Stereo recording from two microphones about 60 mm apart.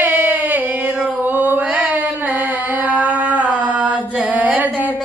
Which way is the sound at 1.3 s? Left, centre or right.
Right.